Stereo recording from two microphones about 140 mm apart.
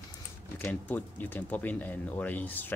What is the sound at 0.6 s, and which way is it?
Speech, 15° left (ahead or behind).